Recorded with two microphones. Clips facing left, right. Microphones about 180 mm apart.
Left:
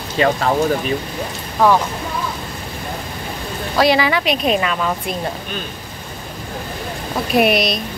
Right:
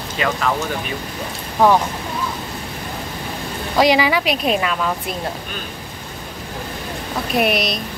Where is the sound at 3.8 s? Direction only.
15° right (ahead or behind).